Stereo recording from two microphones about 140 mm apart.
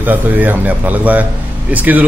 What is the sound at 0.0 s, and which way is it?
A man's voice, 10° right (ahead or behind).